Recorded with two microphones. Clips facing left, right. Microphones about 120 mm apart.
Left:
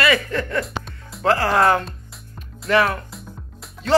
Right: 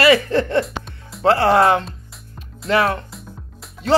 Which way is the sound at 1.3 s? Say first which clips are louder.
Right 3 dB; 30° right (ahead or behind).